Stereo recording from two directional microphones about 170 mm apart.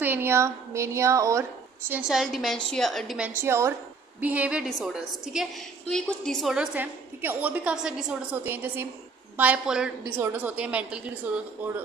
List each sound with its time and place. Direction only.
0.0 s a woman's voice: 15° right (ahead or behind)
1.9 s a woman's voice: 5° right (ahead or behind)
3.3 s a woman's voice: 15° right (ahead or behind)